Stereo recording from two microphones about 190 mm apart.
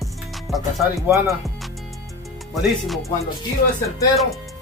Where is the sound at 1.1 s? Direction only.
15° right (ahead or behind).